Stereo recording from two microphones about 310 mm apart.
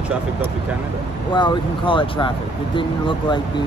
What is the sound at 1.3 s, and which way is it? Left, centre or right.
Speech, centre.